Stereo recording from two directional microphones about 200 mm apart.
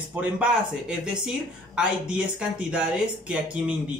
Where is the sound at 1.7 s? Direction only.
5° right (ahead or behind).